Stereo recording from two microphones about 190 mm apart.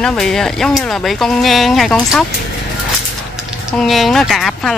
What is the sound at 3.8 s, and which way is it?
Speech, centre (ahead or behind).